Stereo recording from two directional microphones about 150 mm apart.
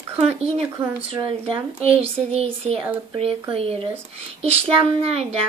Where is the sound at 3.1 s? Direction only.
40° right (ahead or behind).